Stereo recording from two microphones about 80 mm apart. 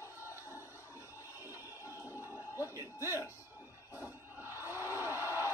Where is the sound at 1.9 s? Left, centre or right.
Right.